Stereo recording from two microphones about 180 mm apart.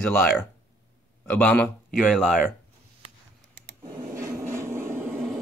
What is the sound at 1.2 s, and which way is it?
Speech, 5° left (ahead or behind).